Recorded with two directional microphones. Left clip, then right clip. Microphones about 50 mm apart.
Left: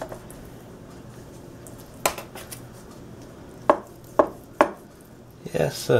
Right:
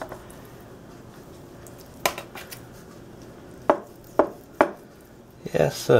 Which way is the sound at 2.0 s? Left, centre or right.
Centre.